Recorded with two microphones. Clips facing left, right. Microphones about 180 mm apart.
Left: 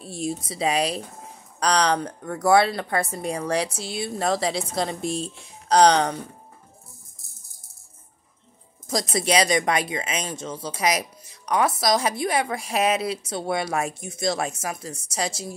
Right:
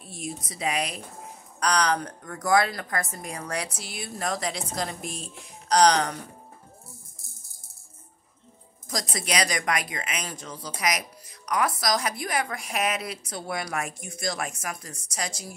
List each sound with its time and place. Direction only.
0.0 s speech: 30° left (ahead or behind)
8.8 s speech: 25° left (ahead or behind)